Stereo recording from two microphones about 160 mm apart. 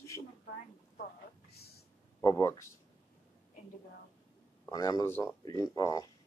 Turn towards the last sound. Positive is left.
turn(degrees=20)  # may be behind; listen again after turning